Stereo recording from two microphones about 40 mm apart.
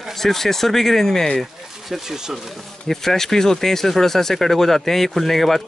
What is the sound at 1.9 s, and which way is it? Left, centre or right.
Speech, centre.